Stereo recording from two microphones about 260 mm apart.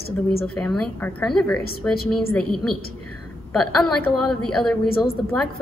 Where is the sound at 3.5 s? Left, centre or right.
Centre.